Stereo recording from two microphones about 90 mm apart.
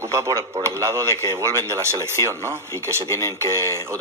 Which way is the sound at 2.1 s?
30° left (ahead or behind).